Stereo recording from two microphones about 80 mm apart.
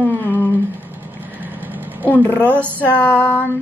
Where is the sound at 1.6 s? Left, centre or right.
Right.